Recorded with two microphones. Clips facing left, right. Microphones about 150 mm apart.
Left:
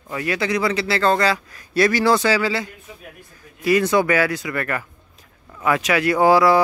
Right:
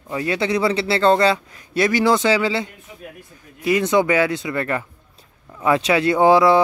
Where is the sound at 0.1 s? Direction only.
25° right (ahead or behind).